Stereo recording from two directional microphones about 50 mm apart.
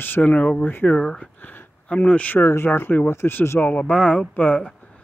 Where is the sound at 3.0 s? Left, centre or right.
Left.